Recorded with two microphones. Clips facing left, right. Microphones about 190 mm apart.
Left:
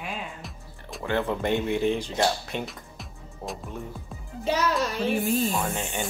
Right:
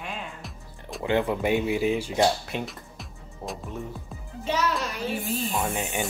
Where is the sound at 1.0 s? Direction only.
15° right (ahead or behind).